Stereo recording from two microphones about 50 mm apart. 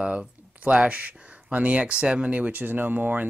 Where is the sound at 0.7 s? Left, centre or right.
Right.